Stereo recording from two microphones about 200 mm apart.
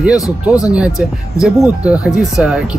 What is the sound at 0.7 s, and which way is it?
Speech, 5° right (ahead or behind).